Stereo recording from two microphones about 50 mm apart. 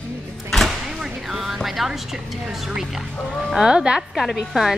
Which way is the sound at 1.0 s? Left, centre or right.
Centre.